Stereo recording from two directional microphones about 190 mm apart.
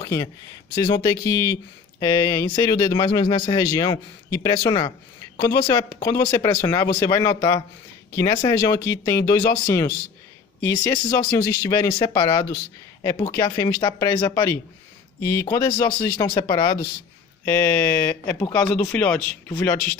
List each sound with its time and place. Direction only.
0.0 s a man's voice: 15° left (ahead or behind)
15.7 s speech: 10° left (ahead or behind)